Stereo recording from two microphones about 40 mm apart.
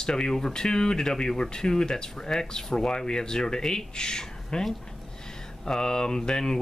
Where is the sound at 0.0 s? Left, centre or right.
Centre.